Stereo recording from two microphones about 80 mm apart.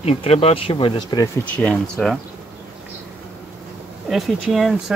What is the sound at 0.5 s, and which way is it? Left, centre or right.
Speech, left.